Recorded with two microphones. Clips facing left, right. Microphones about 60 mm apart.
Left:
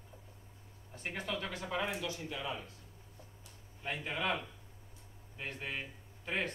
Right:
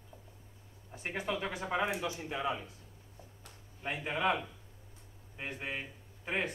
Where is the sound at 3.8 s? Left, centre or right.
Centre.